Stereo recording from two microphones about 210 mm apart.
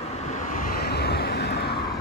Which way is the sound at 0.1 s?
35° left (ahead or behind).